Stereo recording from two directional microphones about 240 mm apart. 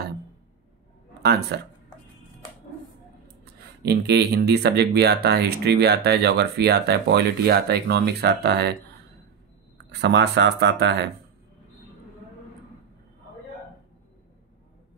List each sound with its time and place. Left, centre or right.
1.2 s speech: right
3.8 s speech: right
9.8 s speech: right